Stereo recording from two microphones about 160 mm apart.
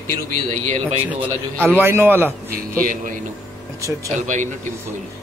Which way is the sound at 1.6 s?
15° right (ahead or behind).